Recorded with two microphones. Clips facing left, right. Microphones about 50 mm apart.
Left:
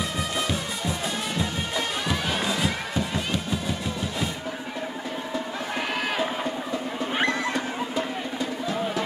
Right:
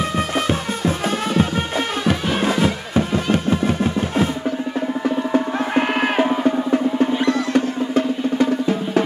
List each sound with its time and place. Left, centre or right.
0.5 s music: right
7.5 s music: right